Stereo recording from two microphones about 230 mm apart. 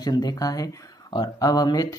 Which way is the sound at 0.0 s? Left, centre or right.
Centre.